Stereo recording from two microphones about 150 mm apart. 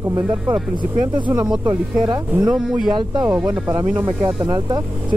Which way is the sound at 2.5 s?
5° right (ahead or behind).